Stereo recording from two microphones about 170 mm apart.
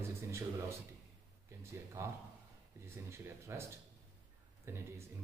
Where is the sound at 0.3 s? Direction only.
15° right (ahead or behind).